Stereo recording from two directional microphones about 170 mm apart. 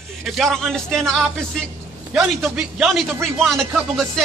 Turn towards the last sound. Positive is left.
turn(degrees=0)  # may be behind; listen again after turning